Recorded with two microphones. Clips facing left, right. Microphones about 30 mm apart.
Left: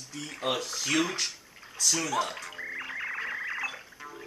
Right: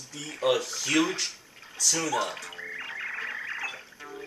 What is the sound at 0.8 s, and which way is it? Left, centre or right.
Speech, centre.